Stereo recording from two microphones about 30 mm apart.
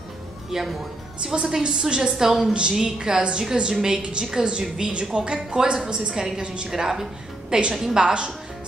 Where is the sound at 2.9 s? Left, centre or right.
Right.